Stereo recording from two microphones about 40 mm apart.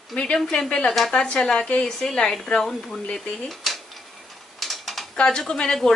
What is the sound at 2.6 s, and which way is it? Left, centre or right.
Speech, centre.